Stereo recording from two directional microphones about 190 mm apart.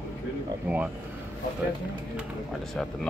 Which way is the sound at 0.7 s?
10° right (ahead or behind).